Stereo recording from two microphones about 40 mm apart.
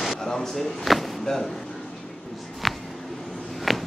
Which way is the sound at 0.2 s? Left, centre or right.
Centre.